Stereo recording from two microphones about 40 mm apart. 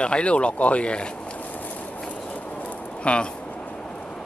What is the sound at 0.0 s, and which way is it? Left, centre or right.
Speech, left.